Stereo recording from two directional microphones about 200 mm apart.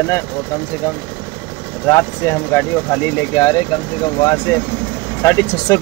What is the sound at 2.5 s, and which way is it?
Speech, 10° left (ahead or behind).